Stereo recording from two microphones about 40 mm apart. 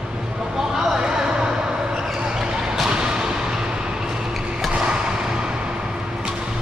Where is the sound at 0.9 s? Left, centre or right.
Centre.